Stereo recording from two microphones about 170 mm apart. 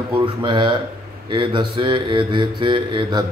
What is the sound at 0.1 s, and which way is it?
Speech, 30° right (ahead or behind).